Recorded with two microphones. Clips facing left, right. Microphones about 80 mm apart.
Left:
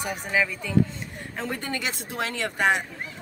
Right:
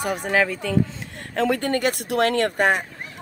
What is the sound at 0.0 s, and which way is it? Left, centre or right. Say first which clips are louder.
Speech: right 5 dB; right.